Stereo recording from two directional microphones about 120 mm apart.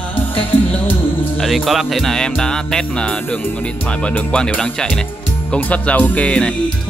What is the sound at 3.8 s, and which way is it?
Speech, 10° left (ahead or behind).